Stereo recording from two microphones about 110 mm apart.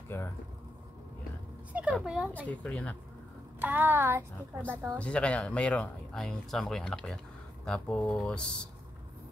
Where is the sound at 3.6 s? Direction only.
15° right (ahead or behind).